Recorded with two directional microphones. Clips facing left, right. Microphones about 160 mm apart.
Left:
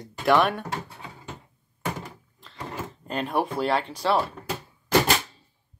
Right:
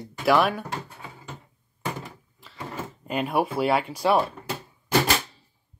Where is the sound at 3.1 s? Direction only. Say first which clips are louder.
Right 2 dB; 10° right (ahead or behind).